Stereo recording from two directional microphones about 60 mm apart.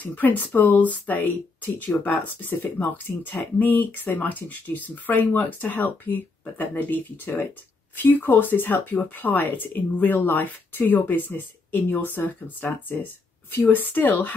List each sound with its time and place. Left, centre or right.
0.0 s speech: left